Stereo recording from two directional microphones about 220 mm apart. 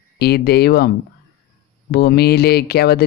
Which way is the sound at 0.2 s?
45° left (ahead or behind).